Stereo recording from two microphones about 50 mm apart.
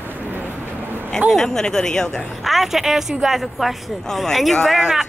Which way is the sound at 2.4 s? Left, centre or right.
Centre.